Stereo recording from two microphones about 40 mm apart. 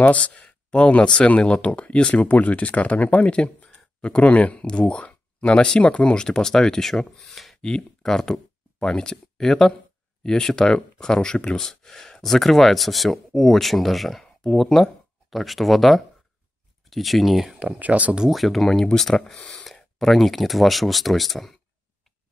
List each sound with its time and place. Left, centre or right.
0.0 s speech: left
0.4 s a sound: left
1.2 s speech: left
2.2 s speech: left
6.2 s speech: centre
7.6 s speech: centre
17.7 s speech: right
18.3 s speech: centre